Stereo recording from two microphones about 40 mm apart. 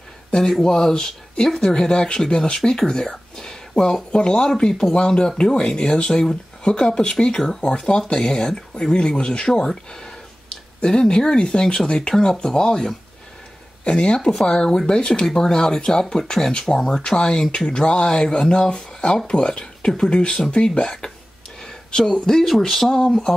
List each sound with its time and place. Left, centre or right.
0.5 s speech: centre
21.6 s speech: centre